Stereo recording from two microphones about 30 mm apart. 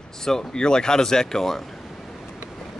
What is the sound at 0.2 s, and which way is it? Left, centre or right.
Speech, left.